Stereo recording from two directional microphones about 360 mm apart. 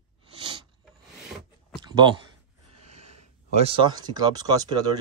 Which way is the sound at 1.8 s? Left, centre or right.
Centre.